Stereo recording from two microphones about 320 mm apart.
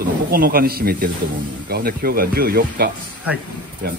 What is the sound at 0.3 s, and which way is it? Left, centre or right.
Speech, right.